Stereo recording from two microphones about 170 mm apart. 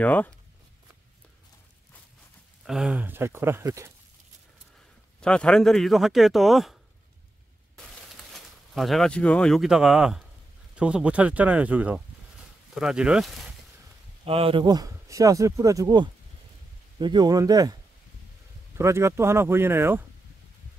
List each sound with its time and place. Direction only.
0.0 s speech: 10° left (ahead or behind)
2.6 s speech: 5° right (ahead or behind)
5.2 s speech: 5° left (ahead or behind)
7.7 s a sound: centre (ahead or behind)
10.8 s speech: 5° right (ahead or behind)
14.2 s speech: 35° right (ahead or behind)
18.8 s speech: 15° right (ahead or behind)